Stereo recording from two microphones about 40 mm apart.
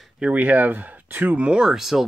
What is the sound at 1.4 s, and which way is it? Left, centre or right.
Speech, right.